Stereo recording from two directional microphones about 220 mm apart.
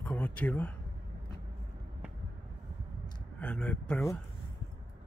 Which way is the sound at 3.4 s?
5° left (ahead or behind).